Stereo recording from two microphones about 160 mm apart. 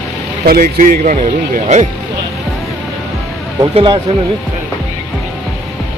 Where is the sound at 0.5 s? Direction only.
55° right (ahead or behind).